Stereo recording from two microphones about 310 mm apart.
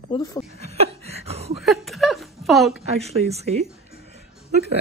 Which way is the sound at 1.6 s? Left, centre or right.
Centre.